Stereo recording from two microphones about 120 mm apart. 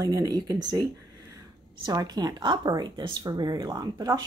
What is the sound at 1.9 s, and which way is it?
Speech, 35° right (ahead or behind).